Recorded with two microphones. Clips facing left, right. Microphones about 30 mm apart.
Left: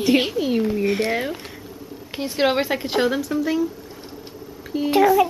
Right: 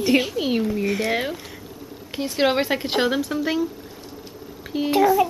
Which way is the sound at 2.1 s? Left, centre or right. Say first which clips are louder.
Even; centre.